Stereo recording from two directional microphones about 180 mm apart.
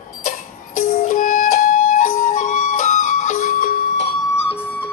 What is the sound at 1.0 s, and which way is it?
Music, 45° left (ahead or behind).